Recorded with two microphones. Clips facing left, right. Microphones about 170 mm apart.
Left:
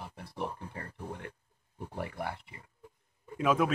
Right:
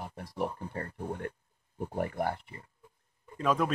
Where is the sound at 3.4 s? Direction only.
5° left (ahead or behind).